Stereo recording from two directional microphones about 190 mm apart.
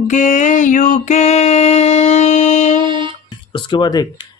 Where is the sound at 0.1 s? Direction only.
40° left (ahead or behind).